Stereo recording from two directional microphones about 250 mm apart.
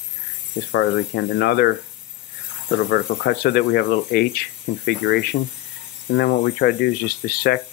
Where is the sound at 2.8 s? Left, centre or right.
Left.